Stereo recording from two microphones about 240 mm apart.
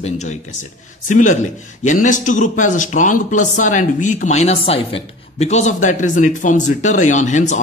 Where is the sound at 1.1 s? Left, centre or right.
Left.